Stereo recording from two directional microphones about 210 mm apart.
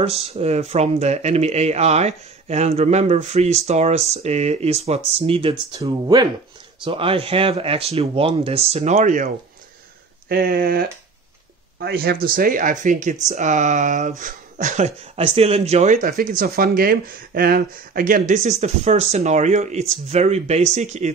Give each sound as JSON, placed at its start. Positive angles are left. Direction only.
{"t": 0.0, "sound": "speech", "side_deg": -30}
{"t": 10.2, "sound": "speech", "side_deg": -45}